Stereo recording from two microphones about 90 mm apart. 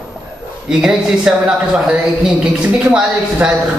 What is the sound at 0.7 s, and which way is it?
Speech, 10° right (ahead or behind).